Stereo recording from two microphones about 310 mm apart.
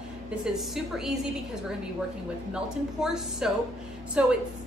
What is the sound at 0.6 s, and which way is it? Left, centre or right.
A woman's voice, centre.